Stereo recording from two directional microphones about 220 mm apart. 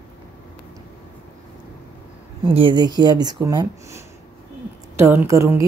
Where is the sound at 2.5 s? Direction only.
20° right (ahead or behind).